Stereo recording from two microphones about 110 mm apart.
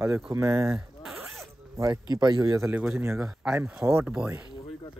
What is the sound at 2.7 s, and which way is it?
Speech, 15° right (ahead or behind).